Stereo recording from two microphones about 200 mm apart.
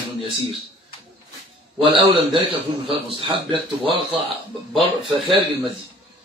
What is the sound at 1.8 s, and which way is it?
A man's voice, 25° right (ahead or behind).